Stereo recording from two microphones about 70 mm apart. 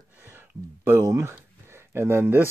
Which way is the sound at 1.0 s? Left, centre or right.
Right.